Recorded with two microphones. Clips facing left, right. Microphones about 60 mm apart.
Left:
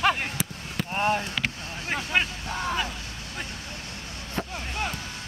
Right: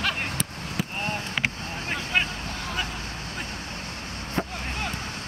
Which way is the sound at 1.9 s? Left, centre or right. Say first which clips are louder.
Left 1 dB; centre.